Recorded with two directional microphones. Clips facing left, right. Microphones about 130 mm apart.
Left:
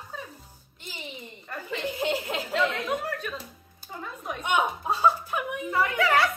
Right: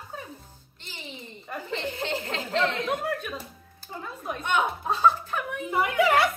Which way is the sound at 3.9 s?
Centre (ahead or behind).